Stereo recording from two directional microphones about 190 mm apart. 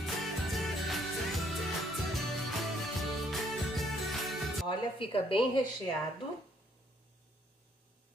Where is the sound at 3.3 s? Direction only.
Centre (ahead or behind).